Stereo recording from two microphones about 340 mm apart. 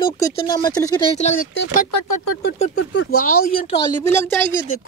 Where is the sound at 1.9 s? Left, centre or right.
Left.